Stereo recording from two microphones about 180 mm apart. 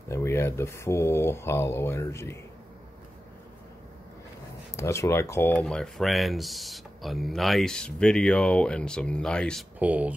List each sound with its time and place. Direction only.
0.1 s speech: 15° left (ahead or behind)
4.7 s speech: 15° left (ahead or behind)
9.8 s speech: 10° right (ahead or behind)